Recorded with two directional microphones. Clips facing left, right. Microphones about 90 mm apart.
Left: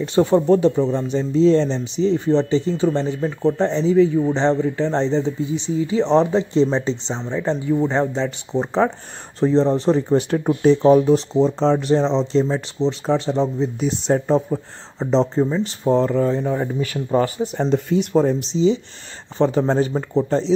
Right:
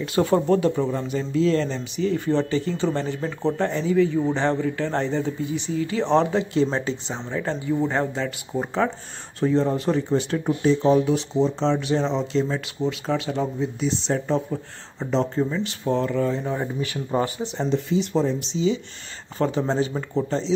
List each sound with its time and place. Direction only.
0.0 s speech: 20° left (ahead or behind); by 10.7 s 40° left (ahead or behind)
10.7 s speech: 55° left (ahead or behind)
11.1 s speech: 35° left (ahead or behind)
13.7 s speech: 50° left (ahead or behind)
14.1 s speech: 35° left (ahead or behind)
17.6 s speech: 55° left (ahead or behind)
19.4 s speech: 30° left (ahead or behind)
20.2 s speech: 40° left (ahead or behind)